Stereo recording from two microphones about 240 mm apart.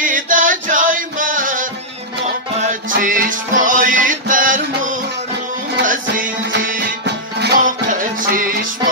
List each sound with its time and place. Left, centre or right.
0.0 s music: right
2.7 s music: right
7.3 s music: right